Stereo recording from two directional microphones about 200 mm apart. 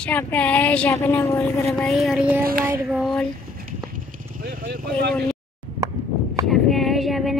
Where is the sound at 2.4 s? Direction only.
45° right (ahead or behind).